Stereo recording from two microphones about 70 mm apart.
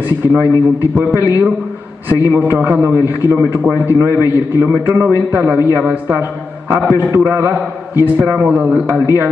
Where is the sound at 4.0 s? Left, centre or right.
Right.